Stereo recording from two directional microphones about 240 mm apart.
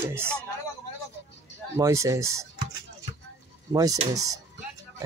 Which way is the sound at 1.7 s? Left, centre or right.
Centre.